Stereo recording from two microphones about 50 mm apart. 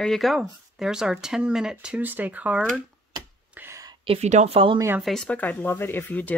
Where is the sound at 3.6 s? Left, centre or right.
Right.